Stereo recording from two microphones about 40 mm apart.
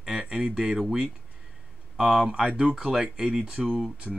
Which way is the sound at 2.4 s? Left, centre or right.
Right.